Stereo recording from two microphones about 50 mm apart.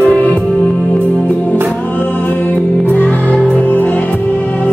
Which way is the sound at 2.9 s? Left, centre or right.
Left.